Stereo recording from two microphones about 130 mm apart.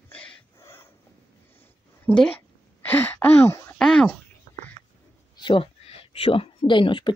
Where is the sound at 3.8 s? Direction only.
5° left (ahead or behind).